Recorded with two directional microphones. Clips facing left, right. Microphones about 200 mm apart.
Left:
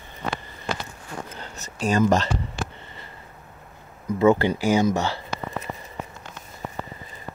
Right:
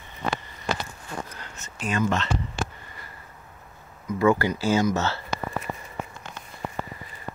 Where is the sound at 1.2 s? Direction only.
30° left (ahead or behind).